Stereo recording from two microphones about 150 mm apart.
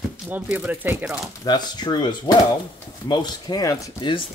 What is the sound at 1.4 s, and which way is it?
Speech, 30° left (ahead or behind).